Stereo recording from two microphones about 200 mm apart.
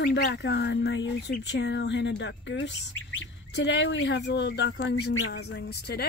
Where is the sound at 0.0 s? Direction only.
55° left (ahead or behind).